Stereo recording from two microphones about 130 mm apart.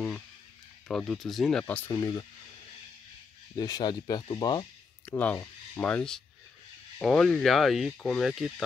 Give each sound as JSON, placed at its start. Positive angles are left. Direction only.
{"t": 0.8, "sound": "speech", "side_deg": 5}
{"t": 1.9, "sound": "speech", "side_deg": 30}
{"t": 3.5, "sound": "speech", "side_deg": 30}
{"t": 5.0, "sound": "speech", "side_deg": 15}